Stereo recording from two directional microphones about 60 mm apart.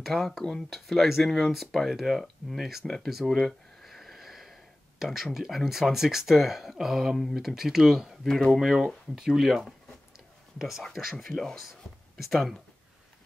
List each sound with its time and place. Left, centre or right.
0.0 s speech: centre
3.3 s a sound: centre
3.9 s a sound: centre
5.7 s speech: centre
8.3 s speech: centre
8.5 s speech: centre
11.2 s speech: centre